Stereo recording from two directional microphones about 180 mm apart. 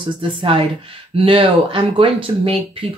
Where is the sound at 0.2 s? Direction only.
30° right (ahead or behind).